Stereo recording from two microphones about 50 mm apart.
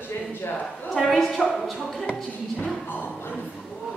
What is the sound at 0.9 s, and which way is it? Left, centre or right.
A woman's voice, centre.